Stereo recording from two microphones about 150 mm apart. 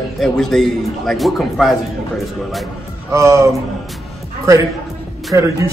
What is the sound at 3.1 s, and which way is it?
Speech, 20° right (ahead or behind).